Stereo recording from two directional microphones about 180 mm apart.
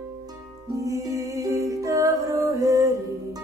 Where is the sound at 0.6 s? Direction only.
20° right (ahead or behind).